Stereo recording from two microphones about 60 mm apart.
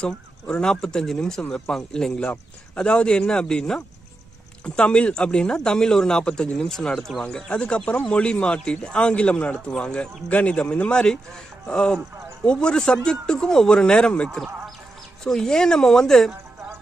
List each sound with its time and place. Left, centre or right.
0.0 s speech: centre